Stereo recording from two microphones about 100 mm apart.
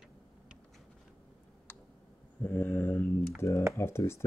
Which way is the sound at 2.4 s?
20° left (ahead or behind).